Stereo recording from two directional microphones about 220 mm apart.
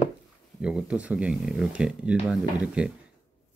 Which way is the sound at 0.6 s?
5° right (ahead or behind).